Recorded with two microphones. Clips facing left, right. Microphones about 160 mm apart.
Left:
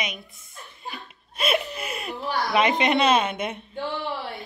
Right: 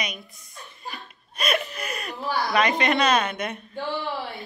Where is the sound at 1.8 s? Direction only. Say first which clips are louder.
Even; 20° left (ahead or behind).